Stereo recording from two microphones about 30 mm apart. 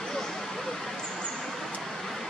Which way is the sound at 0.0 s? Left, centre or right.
Centre.